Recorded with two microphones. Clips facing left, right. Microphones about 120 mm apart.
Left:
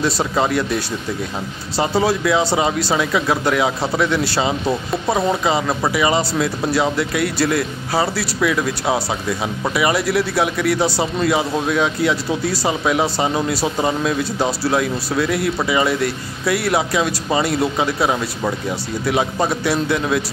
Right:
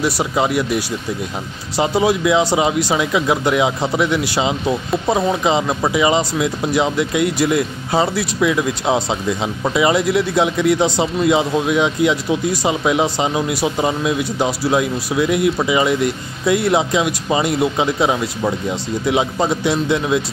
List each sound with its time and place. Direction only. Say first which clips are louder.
0.0 s speech: right 1 dB; 15° right (ahead or behind)